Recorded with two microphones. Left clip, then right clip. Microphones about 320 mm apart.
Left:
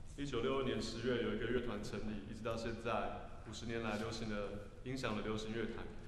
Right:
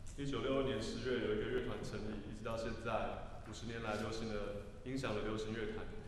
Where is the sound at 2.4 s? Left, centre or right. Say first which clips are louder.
Left 1 dB; left.